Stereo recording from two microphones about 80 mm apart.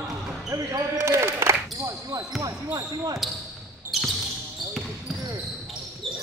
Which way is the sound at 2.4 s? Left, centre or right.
Right.